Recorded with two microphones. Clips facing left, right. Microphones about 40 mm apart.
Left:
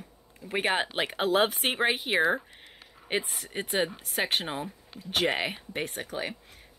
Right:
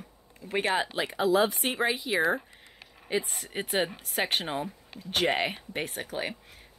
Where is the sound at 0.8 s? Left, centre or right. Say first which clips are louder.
Right 1 dB; left.